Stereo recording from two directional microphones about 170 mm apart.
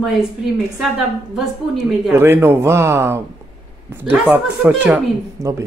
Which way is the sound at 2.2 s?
15° right (ahead or behind).